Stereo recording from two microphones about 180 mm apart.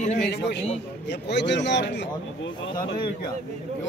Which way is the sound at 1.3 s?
75° left (ahead or behind).